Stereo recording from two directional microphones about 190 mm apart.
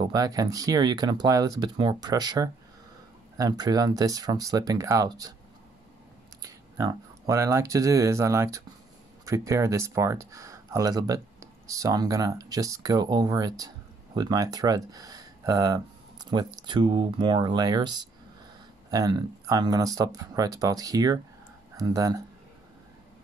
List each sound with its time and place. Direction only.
0.0 s speech: 20° right (ahead or behind)
6.4 s speech: 20° right (ahead or behind)